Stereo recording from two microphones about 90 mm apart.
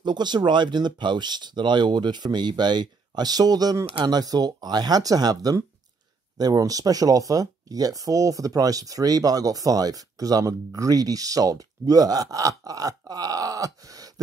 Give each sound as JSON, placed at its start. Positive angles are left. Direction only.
{"t": 0.0, "sound": "speech", "side_deg": -55}